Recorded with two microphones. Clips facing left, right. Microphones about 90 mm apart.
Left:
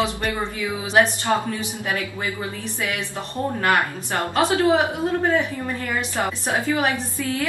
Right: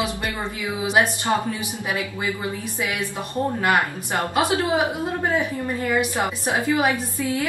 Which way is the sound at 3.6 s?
15° right (ahead or behind).